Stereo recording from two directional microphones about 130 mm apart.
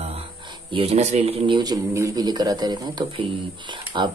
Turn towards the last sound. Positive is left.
turn(degrees=-35)  # may be behind; listen again after turning